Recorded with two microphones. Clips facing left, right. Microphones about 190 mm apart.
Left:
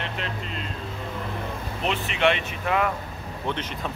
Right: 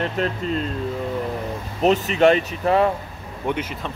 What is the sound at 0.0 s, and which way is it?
Speech, 40° right (ahead or behind).